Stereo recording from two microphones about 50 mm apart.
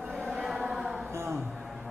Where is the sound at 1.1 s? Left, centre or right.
Right.